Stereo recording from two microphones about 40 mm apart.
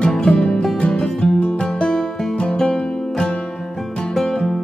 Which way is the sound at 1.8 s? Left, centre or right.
Centre.